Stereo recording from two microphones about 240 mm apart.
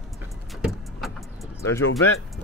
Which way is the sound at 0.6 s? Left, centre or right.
Centre.